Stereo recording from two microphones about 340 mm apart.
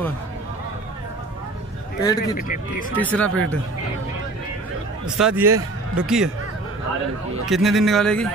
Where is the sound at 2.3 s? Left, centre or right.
Left.